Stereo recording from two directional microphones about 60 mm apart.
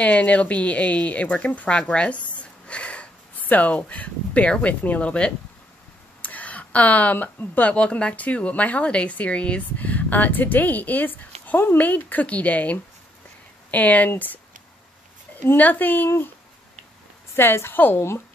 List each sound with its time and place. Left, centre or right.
0.0 s speech: left
6.2 s a sound: left
7.5 s speech: left
15.4 s a woman's voice: left
17.4 s a woman's voice: left